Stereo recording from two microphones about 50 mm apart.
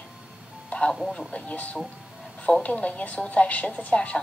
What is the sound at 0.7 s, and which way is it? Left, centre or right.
Speech, left.